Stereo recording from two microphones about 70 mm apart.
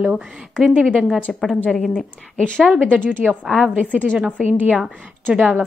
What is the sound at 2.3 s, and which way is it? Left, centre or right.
Speech, centre.